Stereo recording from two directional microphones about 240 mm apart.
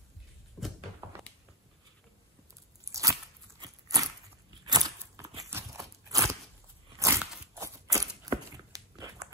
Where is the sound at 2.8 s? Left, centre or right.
Centre.